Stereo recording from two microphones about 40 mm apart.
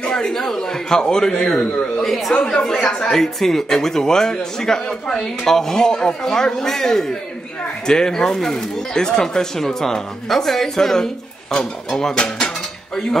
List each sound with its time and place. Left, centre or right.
0.1 s a man's voice: centre
2.4 s a man's voice: centre